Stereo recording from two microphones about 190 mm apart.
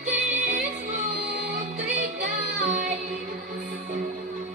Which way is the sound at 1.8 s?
40° right (ahead or behind).